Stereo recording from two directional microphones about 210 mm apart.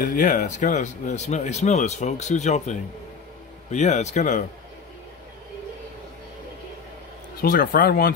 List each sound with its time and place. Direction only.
0.0 s speech: 40° left (ahead or behind)
7.4 s speech: 45° left (ahead or behind)